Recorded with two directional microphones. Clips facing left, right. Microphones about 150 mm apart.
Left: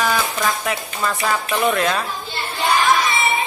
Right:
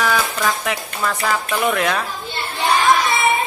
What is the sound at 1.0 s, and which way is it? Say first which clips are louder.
Speech: even; 10° left (ahead or behind).